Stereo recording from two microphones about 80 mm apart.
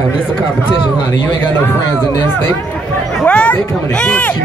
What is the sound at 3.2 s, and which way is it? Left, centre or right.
Speech, centre.